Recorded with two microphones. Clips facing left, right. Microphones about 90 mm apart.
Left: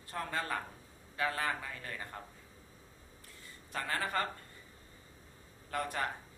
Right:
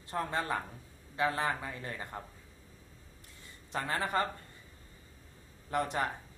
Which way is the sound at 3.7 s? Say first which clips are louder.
Right 3 dB; 20° right (ahead or behind).